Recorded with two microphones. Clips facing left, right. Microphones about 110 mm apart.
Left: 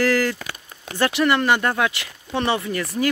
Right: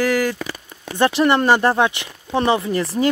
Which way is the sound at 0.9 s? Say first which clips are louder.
Right 3 dB; 25° right (ahead or behind).